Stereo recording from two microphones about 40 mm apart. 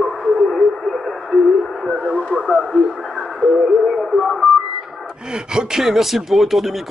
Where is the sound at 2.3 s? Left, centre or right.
Centre.